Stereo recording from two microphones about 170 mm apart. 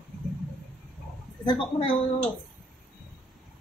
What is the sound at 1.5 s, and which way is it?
Speech, 30° left (ahead or behind).